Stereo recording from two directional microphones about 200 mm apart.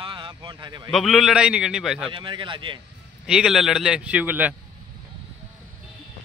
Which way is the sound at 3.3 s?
Centre (ahead or behind).